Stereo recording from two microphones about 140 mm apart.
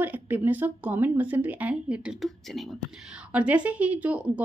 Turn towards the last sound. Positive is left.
turn(degrees=-10)  # may be behind; listen again after turning